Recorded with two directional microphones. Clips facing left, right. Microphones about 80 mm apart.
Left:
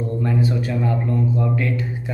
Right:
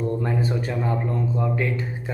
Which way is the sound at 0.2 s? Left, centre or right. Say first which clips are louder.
Left 3 dB; right.